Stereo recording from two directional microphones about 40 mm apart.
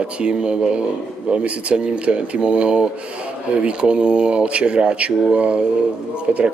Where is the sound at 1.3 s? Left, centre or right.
Right.